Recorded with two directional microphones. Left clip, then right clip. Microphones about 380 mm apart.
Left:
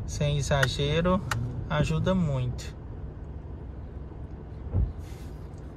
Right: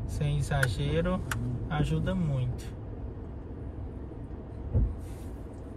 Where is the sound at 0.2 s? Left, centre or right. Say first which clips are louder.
Left 5 dB; centre.